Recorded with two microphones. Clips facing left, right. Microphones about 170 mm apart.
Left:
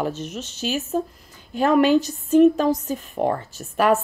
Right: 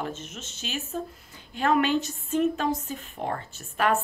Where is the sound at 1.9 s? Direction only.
40° left (ahead or behind).